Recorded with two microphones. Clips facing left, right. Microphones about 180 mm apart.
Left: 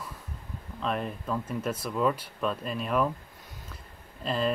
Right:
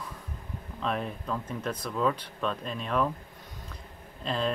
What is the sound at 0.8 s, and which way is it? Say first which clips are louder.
Speech: left 1 dB; centre (ahead or behind).